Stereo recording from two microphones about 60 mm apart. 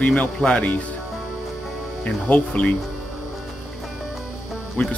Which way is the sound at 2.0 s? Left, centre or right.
Left.